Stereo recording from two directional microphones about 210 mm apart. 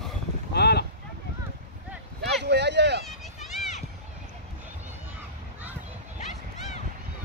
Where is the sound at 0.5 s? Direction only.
50° left (ahead or behind).